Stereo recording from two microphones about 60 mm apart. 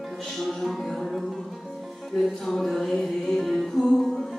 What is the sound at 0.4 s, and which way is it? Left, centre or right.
Music, centre.